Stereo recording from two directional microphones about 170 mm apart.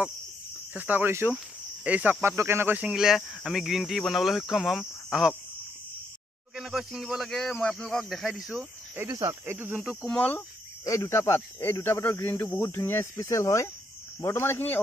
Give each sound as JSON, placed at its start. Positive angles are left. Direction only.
{"t": 0.7, "sound": "speech", "side_deg": -10}
{"t": 6.5, "sound": "speech", "side_deg": 0}
{"t": 9.1, "sound": "speech", "side_deg": -25}
{"t": 9.5, "sound": "speech", "side_deg": -10}